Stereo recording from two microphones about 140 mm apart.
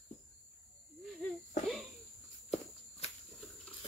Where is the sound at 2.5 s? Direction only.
50° left (ahead or behind).